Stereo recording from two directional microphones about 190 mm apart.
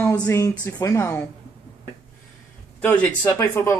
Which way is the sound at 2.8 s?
5° left (ahead or behind).